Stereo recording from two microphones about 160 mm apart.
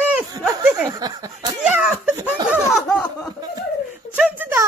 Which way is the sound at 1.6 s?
5° right (ahead or behind).